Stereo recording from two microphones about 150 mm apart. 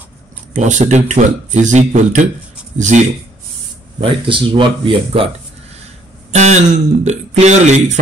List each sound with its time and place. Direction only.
0.5 s speech: 55° right (ahead or behind)
4.0 s speech: 35° right (ahead or behind)
6.3 s speech: 50° right (ahead or behind)